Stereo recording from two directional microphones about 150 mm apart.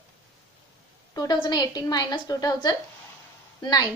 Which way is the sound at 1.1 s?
25° left (ahead or behind).